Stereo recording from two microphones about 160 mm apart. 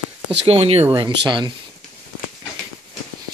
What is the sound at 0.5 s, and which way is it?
Speech, 40° right (ahead or behind).